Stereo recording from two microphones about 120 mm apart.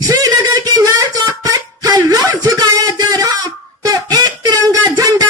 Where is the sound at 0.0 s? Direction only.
30° right (ahead or behind).